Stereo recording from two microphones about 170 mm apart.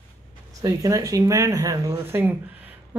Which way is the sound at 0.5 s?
20° right (ahead or behind).